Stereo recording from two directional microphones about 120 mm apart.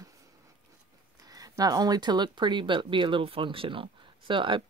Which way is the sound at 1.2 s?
30° right (ahead or behind).